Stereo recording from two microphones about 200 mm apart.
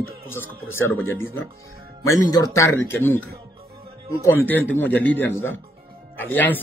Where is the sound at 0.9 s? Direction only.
90° left.